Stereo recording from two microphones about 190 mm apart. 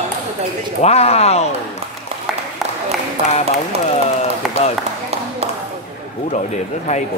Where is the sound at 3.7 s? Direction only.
35° right (ahead or behind).